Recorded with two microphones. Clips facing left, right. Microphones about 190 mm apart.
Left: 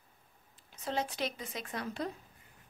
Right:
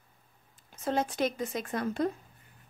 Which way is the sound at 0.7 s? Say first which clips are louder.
Right 5 dB; 50° right (ahead or behind).